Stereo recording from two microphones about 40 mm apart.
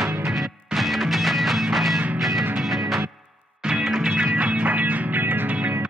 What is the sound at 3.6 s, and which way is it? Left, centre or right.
Music, centre.